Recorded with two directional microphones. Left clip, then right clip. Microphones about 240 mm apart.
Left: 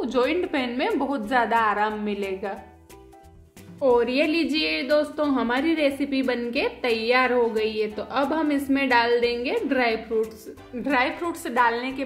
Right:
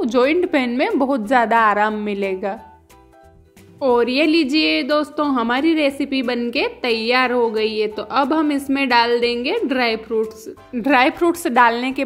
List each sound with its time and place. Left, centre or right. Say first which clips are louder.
0.0 s a woman's voice: right 7 dB; right
3.8 s a woman's voice: right 4 dB; right